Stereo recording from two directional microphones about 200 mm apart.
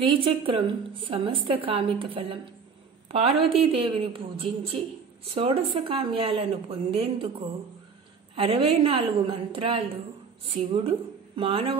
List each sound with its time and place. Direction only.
0.0 s a woman's voice: 25° right (ahead or behind)